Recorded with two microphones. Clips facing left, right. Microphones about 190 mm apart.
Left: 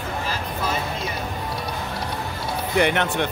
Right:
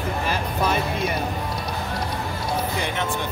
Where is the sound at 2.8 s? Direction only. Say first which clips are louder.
Left 6 dB; 65° left (ahead or behind).